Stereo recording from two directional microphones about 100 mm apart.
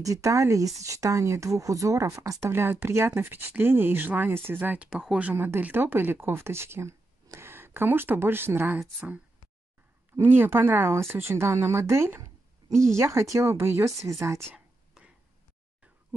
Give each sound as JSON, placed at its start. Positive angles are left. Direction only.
{"t": 0.0, "sound": "speech", "side_deg": -35}
{"t": 4.8, "sound": "speech", "side_deg": -5}
{"t": 15.0, "sound": "a sound", "side_deg": -5}